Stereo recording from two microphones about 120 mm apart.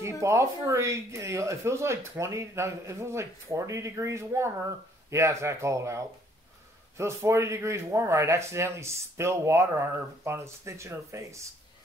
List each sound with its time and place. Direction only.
0.0 s speech: 25° right (ahead or behind)